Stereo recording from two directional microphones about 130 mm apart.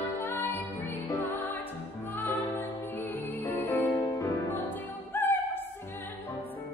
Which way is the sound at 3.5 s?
15° left (ahead or behind).